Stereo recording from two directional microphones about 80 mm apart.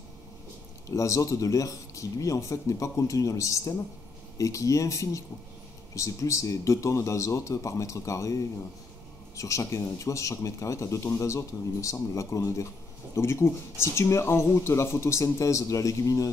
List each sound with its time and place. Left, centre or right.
0.8 s speech: left
9.4 s speech: left